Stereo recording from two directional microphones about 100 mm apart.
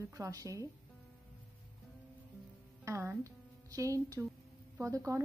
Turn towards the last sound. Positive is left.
turn(degrees=-30)  # may be behind; listen again after turning